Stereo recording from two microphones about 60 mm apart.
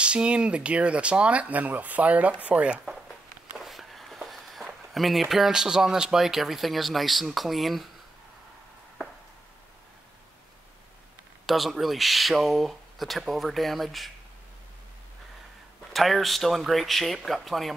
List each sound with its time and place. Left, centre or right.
0.0 s speech: centre
3.5 s speech: centre
11.4 s speech: centre
15.9 s speech: centre